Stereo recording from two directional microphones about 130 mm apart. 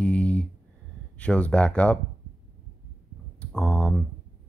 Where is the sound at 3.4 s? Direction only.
5° left (ahead or behind).